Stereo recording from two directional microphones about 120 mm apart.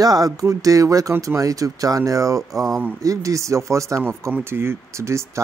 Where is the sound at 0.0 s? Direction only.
30° right (ahead or behind).